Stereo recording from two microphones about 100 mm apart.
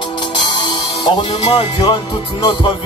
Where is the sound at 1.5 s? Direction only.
60° left (ahead or behind).